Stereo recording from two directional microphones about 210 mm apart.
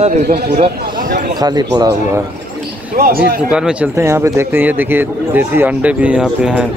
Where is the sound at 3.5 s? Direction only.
5° right (ahead or behind).